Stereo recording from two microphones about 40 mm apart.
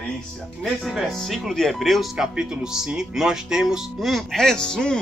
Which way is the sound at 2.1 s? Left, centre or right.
Centre.